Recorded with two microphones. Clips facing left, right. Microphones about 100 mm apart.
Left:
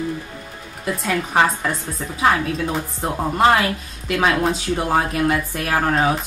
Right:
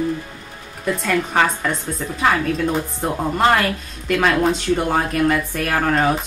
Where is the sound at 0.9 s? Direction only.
5° left (ahead or behind).